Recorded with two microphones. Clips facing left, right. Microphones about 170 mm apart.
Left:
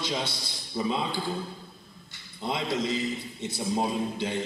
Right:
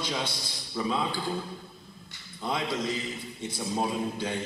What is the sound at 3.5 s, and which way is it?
Speech, 20° left (ahead or behind).